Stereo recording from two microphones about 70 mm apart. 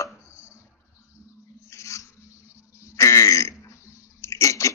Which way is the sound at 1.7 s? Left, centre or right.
Left.